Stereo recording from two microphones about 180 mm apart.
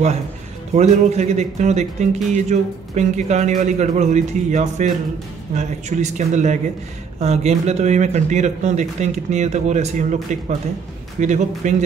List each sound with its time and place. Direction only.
0.7 s speech: 40° right (ahead or behind)
11.1 s speech: 40° right (ahead or behind)